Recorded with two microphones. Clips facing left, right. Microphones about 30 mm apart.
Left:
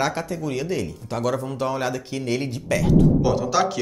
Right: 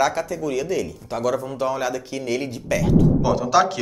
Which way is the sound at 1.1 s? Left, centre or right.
Left.